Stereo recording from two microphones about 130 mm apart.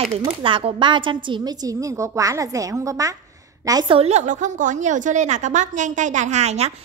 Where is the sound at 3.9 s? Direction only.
55° right (ahead or behind).